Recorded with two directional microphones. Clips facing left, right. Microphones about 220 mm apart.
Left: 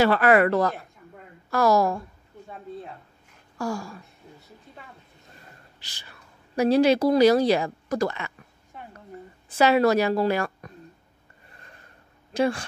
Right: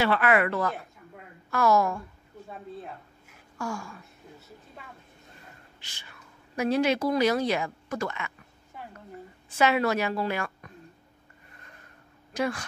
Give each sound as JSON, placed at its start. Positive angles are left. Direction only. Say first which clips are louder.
{"t": 0.0, "sound": "a woman's voice", "louder": "left 5 dB", "side_deg": 40}
{"t": 3.5, "sound": "a woman's voice", "louder": "left 5 dB", "side_deg": 35}
{"t": 5.8, "sound": "a woman's voice", "louder": "left 1 dB", "side_deg": 35}
{"t": 9.6, "sound": "a woman's voice", "louder": "left 5 dB", "side_deg": 35}
{"t": 12.4, "sound": "a woman's voice", "louder": "left 5 dB", "side_deg": 30}